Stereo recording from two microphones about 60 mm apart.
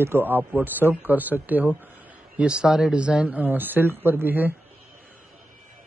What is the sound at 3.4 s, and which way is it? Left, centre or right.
Speech, right.